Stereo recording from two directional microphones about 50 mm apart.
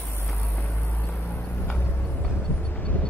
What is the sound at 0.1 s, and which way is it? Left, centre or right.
Vehicle, left.